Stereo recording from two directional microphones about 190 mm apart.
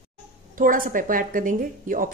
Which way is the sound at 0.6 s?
45° right (ahead or behind).